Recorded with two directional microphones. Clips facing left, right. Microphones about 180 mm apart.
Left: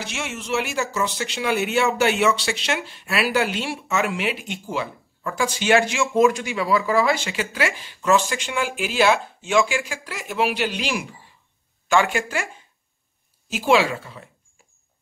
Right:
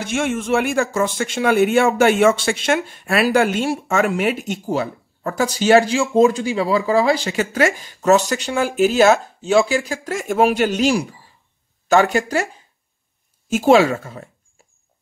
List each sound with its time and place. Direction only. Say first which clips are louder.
0.0 s speech: right 10 dB; 50° right (ahead or behind)